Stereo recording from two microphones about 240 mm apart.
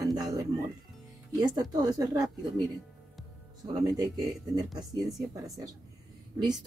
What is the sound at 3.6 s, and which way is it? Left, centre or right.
Speech, centre.